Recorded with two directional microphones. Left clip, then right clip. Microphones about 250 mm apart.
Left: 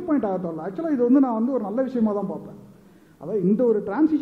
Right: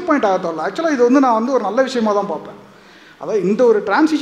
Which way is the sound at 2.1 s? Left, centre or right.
Right.